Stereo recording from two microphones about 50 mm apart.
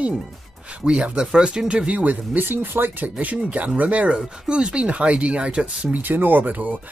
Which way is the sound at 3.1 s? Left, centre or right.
Right.